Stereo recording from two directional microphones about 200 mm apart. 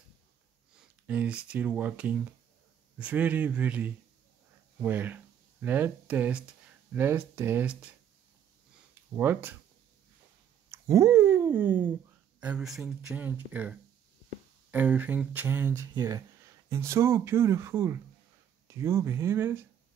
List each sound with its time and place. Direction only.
0.7 s speech: 5° right (ahead or behind)
9.1 s speech: 10° right (ahead or behind)
10.7 s a sound: 15° right (ahead or behind)
12.4 s speech: 5° right (ahead or behind)